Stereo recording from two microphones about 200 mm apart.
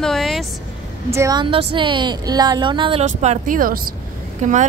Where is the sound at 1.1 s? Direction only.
20° right (ahead or behind).